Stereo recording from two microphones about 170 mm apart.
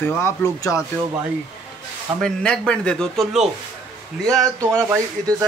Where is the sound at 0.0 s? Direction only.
15° left (ahead or behind).